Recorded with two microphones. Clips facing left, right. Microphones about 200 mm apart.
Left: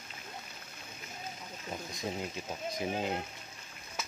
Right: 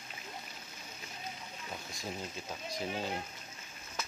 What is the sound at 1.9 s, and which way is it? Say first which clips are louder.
Speech: left 5 dB; 20° left (ahead or behind).